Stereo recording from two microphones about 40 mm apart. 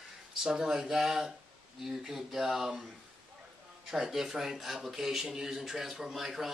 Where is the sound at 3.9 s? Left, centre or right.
Centre.